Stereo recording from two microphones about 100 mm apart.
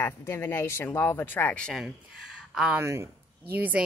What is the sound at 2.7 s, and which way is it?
Speech, 30° right (ahead or behind).